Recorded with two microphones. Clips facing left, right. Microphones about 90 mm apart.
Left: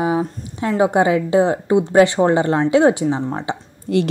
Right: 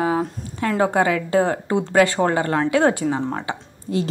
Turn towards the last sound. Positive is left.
turn(degrees=70)  # may be behind; listen again after turning